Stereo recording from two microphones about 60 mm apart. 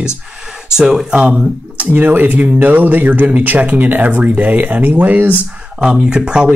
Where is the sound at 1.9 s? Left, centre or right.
Right.